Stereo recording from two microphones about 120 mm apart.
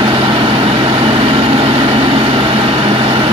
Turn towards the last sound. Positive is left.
turn(degrees=-45)  # may be behind; listen again after turning